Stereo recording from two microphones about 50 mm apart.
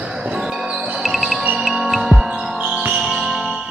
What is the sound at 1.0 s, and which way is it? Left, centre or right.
Music, centre.